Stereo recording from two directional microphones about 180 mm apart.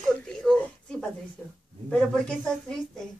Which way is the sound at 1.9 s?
5° left (ahead or behind).